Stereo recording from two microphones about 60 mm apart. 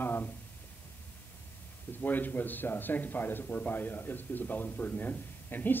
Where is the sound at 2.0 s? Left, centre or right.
Left.